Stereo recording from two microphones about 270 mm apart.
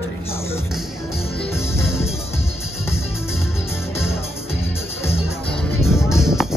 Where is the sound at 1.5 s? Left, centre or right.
Centre.